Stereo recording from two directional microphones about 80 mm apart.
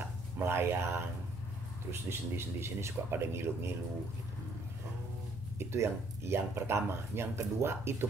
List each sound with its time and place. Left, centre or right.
0.5 s speech: right
5.6 s speech: right